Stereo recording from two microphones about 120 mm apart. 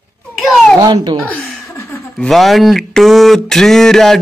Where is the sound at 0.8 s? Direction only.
35° right (ahead or behind).